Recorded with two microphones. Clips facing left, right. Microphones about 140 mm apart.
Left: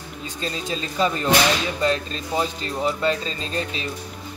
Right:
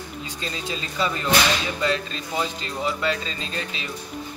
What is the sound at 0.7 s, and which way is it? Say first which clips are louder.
A man's voice: left 4 dB; 35° left (ahead or behind).